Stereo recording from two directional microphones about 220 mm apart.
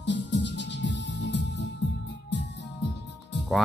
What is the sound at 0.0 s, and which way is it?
Music, 55° left (ahead or behind).